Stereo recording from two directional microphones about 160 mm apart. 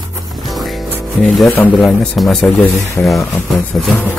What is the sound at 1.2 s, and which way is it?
A man's voice, centre (ahead or behind).